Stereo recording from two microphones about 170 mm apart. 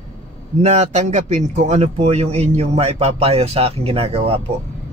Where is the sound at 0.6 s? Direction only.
40° right (ahead or behind).